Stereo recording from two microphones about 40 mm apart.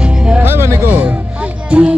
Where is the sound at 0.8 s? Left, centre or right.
Right.